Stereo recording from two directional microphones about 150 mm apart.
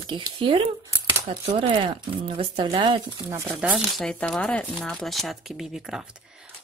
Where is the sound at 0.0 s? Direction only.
35° right (ahead or behind).